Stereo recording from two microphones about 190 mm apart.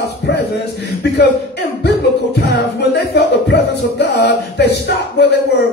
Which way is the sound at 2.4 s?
60° left (ahead or behind).